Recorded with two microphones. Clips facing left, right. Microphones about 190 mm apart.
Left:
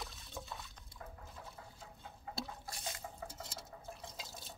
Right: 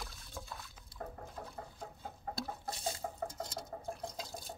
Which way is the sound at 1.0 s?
50° right (ahead or behind).